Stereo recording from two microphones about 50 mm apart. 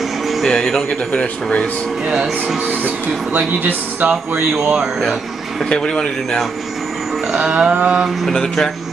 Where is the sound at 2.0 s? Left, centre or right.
Centre.